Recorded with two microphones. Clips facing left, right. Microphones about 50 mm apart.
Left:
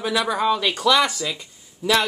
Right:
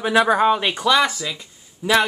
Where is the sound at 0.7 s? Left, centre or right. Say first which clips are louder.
Right 1 dB; centre.